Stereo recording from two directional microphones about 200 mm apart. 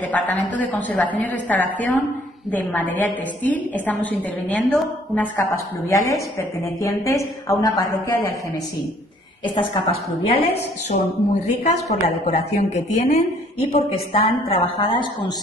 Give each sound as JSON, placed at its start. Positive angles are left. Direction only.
{"t": 0.1, "sound": "a woman's voice", "side_deg": 10}
{"t": 9.4, "sound": "a woman's voice", "side_deg": 25}
{"t": 11.6, "sound": "a woman's voice", "side_deg": 35}